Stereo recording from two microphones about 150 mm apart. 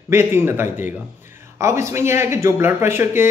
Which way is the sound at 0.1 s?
15° right (ahead or behind).